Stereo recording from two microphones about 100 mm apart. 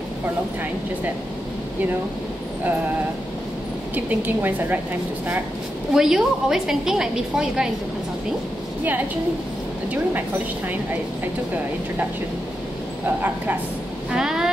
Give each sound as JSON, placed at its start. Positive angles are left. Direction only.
{"t": 3.9, "sound": "a woman's voice", "side_deg": -20}
{"t": 5.9, "sound": "a woman's voice", "side_deg": -5}
{"t": 14.1, "sound": "speech", "side_deg": -5}